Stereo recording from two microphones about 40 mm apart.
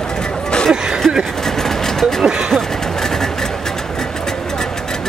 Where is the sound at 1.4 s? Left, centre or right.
Centre.